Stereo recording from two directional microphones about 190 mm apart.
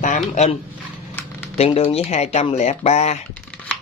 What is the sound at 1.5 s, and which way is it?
Speech, 30° left (ahead or behind).